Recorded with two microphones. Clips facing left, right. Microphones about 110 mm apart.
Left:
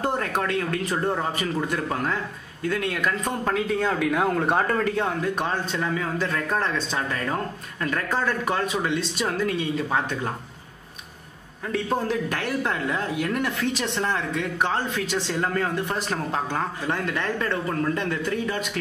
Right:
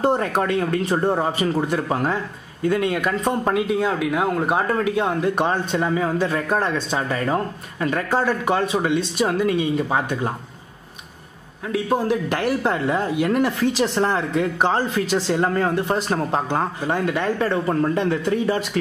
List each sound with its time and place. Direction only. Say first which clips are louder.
0.0 s a man's voice: right 6 dB; 25° right (ahead or behind)
3.5 s speech: right 3 dB; 5° right (ahead or behind)
5.2 s a man's voice: right 5 dB; 25° right (ahead or behind)
11.6 s a man's voice: right 4 dB; 5° right (ahead or behind)
12.6 s a man's voice: right 5 dB; 30° right (ahead or behind)